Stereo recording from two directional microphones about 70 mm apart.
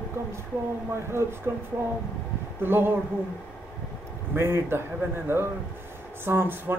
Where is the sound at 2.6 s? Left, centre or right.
Right.